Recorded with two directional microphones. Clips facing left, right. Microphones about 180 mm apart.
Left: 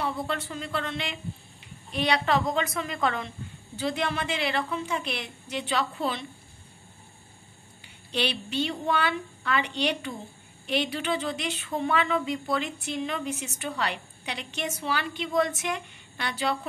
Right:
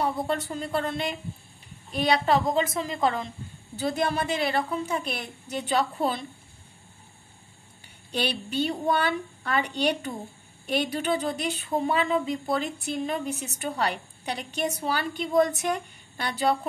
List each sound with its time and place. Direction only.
0.0 s speech: 40° right (ahead or behind)
8.1 s speech: 40° right (ahead or behind)